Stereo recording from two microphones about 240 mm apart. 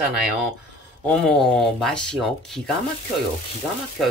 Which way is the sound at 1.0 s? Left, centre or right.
Centre.